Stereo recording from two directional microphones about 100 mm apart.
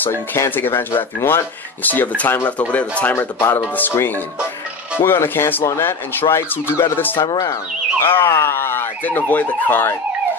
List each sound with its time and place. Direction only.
0.0 s speech: 20° left (ahead or behind)